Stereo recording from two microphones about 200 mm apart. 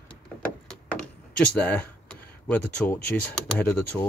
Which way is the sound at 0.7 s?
5° left (ahead or behind).